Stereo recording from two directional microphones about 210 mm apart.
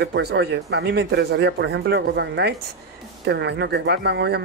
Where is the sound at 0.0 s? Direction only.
50° right (ahead or behind).